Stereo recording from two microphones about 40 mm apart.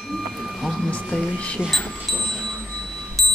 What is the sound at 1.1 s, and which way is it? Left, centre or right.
Speech, left.